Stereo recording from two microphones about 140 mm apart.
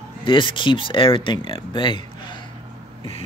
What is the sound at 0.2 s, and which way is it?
Speech, 35° left (ahead or behind).